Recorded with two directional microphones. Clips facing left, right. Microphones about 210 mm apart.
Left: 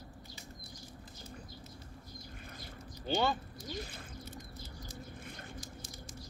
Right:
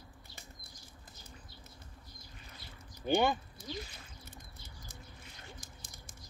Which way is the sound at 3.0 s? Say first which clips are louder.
Right 3 dB; 15° right (ahead or behind).